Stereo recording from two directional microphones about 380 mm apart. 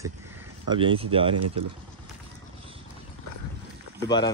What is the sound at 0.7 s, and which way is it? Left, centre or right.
Speech, centre.